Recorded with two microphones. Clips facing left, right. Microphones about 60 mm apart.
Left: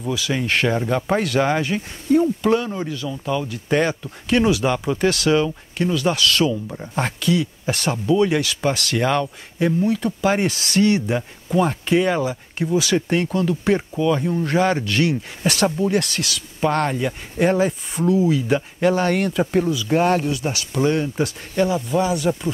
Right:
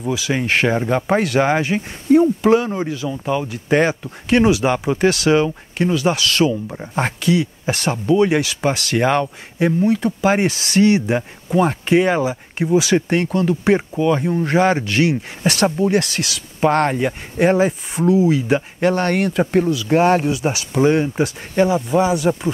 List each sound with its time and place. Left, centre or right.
0.0 s speech: centre
3.1 s speech: right; by 20.2 s centre
20.2 s speech: centre